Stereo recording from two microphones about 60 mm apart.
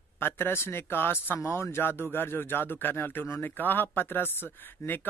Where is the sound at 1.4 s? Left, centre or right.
Left.